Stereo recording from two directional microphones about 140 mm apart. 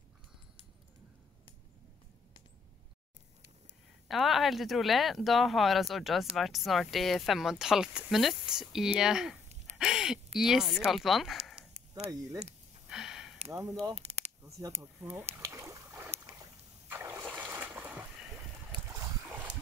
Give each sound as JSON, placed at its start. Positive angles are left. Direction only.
{"t": 4.1, "sound": "speech", "side_deg": 0}
{"t": 12.9, "sound": "a sound", "side_deg": -5}
{"t": 13.5, "sound": "speech", "side_deg": -20}
{"t": 13.9, "sound": "a sound", "side_deg": -50}
{"t": 14.4, "sound": "speech", "side_deg": -20}
{"t": 15.3, "sound": "boat", "side_deg": -20}
{"t": 16.1, "sound": "boat", "side_deg": -55}
{"t": 16.9, "sound": "a sound", "side_deg": -20}
{"t": 17.4, "sound": "boat", "side_deg": -10}